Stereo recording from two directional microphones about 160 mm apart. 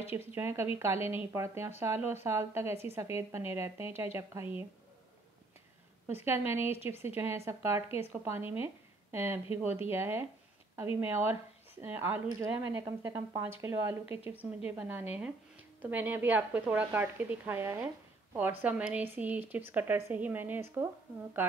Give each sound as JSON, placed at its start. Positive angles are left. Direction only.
{"t": 0.0, "sound": "speech", "side_deg": -15}
{"t": 6.0, "sound": "a woman's voice", "side_deg": -15}